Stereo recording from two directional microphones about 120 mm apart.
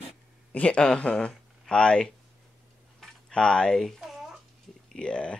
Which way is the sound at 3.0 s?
5° left (ahead or behind).